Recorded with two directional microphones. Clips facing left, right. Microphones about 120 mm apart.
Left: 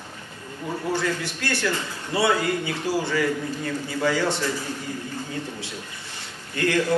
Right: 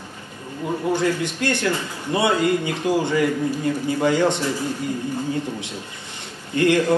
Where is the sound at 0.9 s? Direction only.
20° right (ahead or behind).